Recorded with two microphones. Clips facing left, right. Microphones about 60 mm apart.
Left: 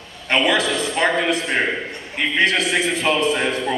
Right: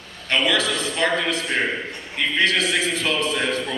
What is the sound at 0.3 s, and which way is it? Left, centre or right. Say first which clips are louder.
A man's voice: left 3 dB; left.